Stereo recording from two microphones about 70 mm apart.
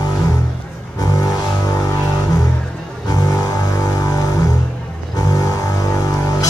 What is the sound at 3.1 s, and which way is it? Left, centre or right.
Music, left.